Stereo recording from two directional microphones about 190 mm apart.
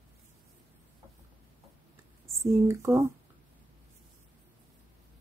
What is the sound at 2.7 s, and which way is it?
Speech, 15° right (ahead or behind).